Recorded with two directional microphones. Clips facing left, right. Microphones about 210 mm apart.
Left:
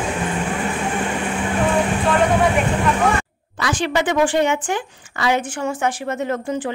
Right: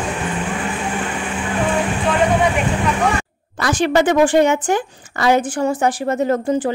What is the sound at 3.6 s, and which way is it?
A woman's voice, 45° right (ahead or behind).